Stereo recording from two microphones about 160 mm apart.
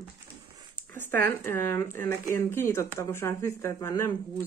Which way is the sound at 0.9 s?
10° left (ahead or behind).